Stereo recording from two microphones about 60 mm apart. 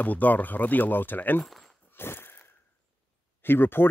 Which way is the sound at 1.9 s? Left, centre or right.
Left.